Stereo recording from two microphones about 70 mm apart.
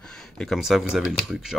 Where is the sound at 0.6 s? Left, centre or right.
Centre.